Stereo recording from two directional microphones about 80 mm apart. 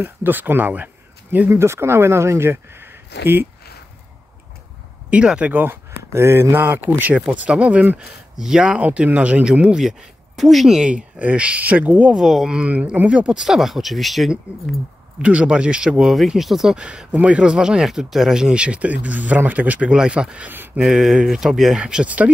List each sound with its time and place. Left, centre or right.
0.0 s speech: right
1.5 s speech: right
5.1 s speech: centre
5.5 s speech: right
7.3 s speech: centre
8.4 s speech: centre
12.2 s speech: centre
15.2 s speech: centre
20.5 s speech: right
20.8 s speech: centre